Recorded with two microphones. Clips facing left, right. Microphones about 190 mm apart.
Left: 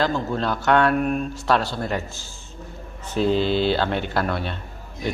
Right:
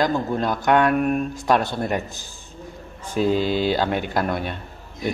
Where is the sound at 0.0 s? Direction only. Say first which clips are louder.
Right 1 dB; 15° right (ahead or behind).